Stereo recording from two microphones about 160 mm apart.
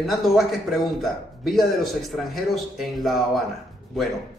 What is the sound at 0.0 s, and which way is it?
A man's voice, centre (ahead or behind).